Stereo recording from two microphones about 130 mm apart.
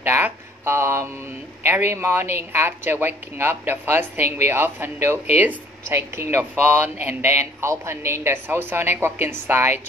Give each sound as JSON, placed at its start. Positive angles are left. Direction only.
{"t": 0.0, "sound": "speech", "side_deg": -15}